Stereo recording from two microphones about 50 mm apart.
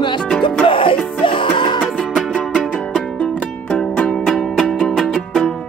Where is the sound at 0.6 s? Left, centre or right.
Left.